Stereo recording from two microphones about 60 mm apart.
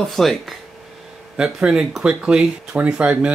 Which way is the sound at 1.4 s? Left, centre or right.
Centre.